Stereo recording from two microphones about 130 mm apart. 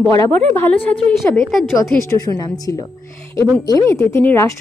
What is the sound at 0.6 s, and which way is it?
A woman's voice, 10° left (ahead or behind).